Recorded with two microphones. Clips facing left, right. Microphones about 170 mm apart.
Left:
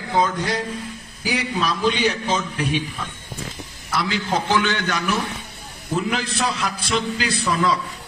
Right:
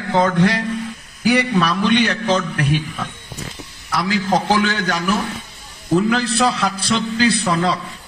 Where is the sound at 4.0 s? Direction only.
45° right (ahead or behind).